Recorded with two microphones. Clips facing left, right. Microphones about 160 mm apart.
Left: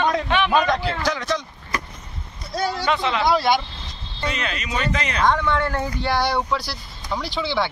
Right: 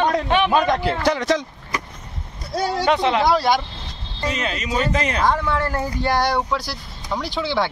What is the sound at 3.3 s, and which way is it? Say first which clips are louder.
Speech: right 1 dB; 40° right (ahead or behind).